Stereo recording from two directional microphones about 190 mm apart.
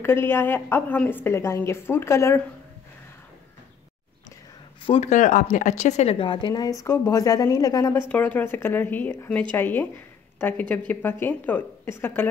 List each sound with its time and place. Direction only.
0.0 s a woman's voice: 15° left (ahead or behind)
4.8 s a woman's voice: 30° left (ahead or behind)
8.1 s a woman's voice: 10° left (ahead or behind)